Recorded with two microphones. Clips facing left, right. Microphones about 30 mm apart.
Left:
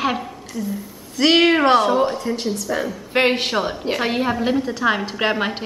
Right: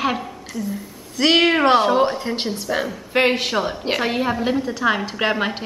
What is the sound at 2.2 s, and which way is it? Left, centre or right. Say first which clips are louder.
Speech: left 1 dB; right.